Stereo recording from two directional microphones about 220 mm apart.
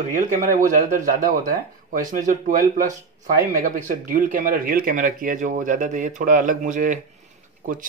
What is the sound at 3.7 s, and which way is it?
Speech, 35° right (ahead or behind).